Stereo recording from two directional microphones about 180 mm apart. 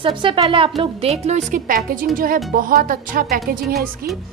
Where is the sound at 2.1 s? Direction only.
50° right (ahead or behind).